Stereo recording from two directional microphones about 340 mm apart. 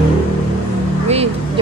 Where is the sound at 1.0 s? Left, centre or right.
Centre.